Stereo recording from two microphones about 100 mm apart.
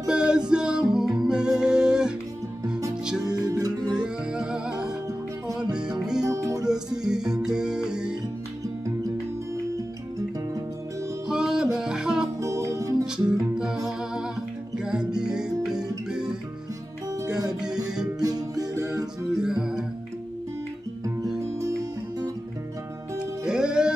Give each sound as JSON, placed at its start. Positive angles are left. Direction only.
{"t": 0.0, "sound": "music", "side_deg": -10}
{"t": 3.3, "sound": "music", "side_deg": -40}
{"t": 4.0, "sound": "music", "side_deg": -10}
{"t": 6.2, "sound": "music", "side_deg": -35}
{"t": 7.1, "sound": "music", "side_deg": -5}
{"t": 11.2, "sound": "music", "side_deg": -5}
{"t": 12.4, "sound": "music", "side_deg": -30}
{"t": 13.6, "sound": "music", "side_deg": -5}
{"t": 17.1, "sound": "music", "side_deg": -35}
{"t": 19.3, "sound": "music", "side_deg": -5}
{"t": 21.4, "sound": "music", "side_deg": -30}
{"t": 23.4, "sound": "music", "side_deg": -5}